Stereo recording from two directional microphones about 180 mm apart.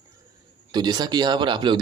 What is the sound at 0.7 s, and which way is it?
Speech, 25° right (ahead or behind).